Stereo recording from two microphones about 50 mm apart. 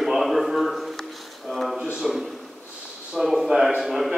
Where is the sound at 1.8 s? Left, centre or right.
Centre.